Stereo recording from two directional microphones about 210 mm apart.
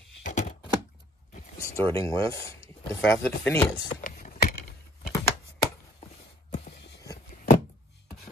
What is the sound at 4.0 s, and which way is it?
Vehicle, 40° left (ahead or behind).